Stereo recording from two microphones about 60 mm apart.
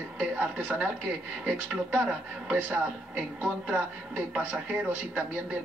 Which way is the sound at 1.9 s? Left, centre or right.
Right.